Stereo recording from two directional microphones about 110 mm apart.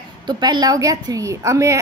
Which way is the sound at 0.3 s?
40° right (ahead or behind).